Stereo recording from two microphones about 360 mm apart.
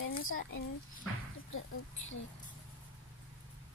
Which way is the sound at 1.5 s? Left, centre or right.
Left.